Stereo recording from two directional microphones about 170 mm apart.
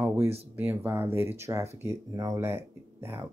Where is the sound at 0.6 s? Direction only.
10° right (ahead or behind).